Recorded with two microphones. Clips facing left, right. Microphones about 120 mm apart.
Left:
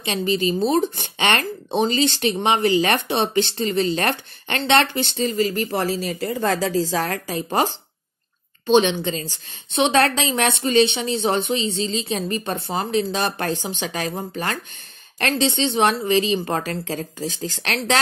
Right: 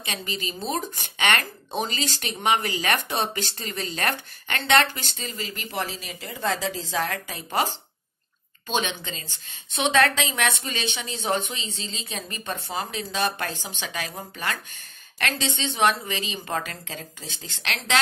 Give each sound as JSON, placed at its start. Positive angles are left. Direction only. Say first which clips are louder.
{"t": 0.0, "sound": "speech", "louder": "left 11 dB", "side_deg": 30}
{"t": 5.1, "sound": "a woman's voice", "louder": "left 14 dB", "side_deg": 45}
{"t": 9.0, "sound": "a woman's voice", "louder": "left 11 dB", "side_deg": 35}